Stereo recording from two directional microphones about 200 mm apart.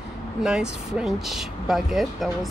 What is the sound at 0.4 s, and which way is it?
Speech, 5° right (ahead or behind).